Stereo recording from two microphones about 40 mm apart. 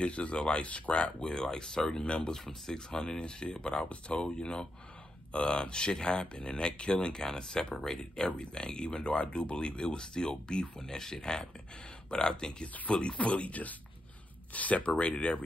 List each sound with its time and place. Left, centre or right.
0.0 s speech: left
1.3 s speech: centre
2.3 s speech: centre
2.9 s speech: left